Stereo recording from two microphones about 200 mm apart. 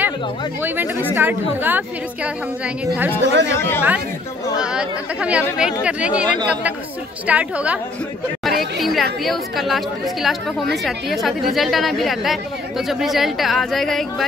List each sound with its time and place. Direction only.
0.6 s a woman's voice: 10° right (ahead or behind)
3.2 s speech: 60° right (ahead or behind)
3.5 s speech: 10° left (ahead or behind)
4.6 s a woman's voice: 5° right (ahead or behind)
8.5 s chatter: centre (ahead or behind)
9.2 s speech: centre (ahead or behind)